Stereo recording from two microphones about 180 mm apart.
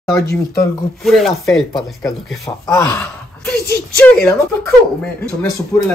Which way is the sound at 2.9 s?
5° left (ahead or behind).